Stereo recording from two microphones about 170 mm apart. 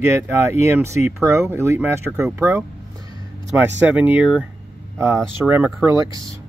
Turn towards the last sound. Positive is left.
turn(degrees=-15)  # may be behind; listen again after turning